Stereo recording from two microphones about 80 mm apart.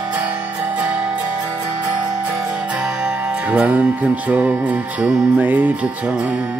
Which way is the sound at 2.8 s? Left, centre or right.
Centre.